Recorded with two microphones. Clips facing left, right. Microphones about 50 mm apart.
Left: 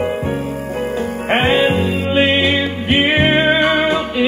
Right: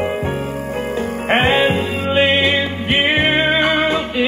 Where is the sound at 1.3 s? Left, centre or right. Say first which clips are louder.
Even; centre.